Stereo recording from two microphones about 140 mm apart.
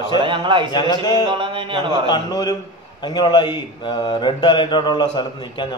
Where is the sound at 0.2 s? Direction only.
35° right (ahead or behind).